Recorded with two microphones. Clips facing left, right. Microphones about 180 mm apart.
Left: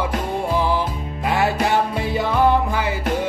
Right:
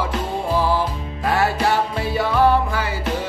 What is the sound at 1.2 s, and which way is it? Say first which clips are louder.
Music: even; 20° left (ahead or behind).